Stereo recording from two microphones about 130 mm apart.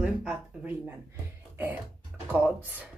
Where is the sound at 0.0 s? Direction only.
5° right (ahead or behind).